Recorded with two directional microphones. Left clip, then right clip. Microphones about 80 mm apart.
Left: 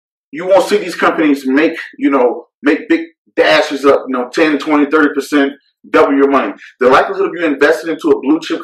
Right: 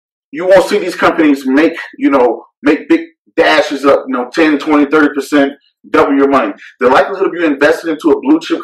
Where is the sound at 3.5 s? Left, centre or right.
Centre.